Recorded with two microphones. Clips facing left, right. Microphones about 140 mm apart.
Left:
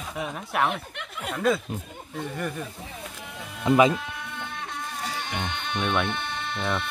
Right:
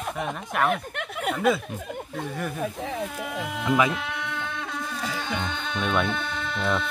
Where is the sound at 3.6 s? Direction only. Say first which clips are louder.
Left 4 dB; 25° left (ahead or behind).